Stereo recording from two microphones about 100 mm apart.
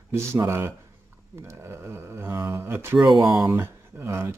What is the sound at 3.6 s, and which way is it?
Speech, 25° right (ahead or behind).